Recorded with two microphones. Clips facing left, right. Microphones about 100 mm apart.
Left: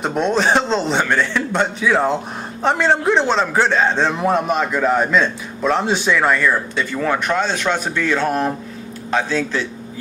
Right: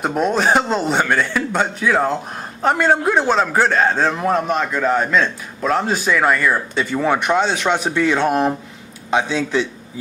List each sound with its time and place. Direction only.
0.0 s a man's voice: 5° right (ahead or behind)